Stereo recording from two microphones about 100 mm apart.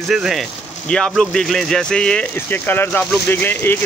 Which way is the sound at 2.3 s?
20° left (ahead or behind).